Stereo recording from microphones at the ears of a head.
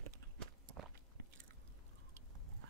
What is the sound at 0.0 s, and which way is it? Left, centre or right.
Walk, right.